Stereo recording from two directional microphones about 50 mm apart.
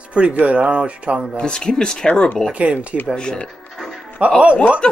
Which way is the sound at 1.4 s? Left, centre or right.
Centre.